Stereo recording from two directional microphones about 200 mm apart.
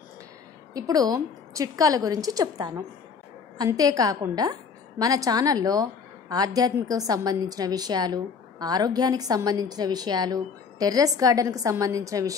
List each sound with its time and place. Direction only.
0.7 s a woman's voice: 20° right (ahead or behind)